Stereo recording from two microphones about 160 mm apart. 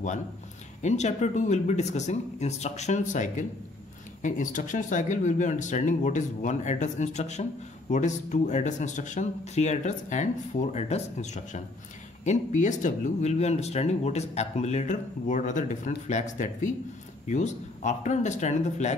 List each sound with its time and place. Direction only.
0.8 s speech: 45° left (ahead or behind)